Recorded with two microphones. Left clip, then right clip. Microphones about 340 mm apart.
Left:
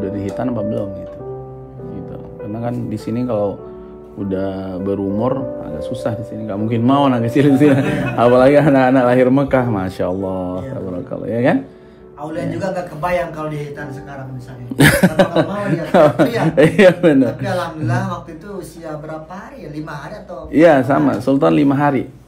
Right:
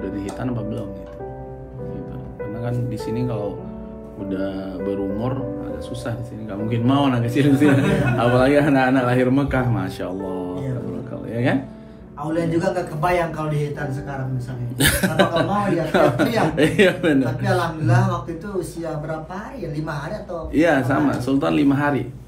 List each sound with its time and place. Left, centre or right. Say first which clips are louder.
0.0 s music: left 5 dB; left
0.4 s speech: left 7 dB; left
2.5 s speech: left 5 dB; left
12.3 s speech: right 1 dB; centre
14.8 s speech: left 6 dB; left
17.4 s speech: left 1 dB; centre
20.5 s speech: left 7 dB; left